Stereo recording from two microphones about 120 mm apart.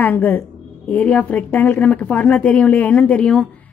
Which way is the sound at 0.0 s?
15° left (ahead or behind).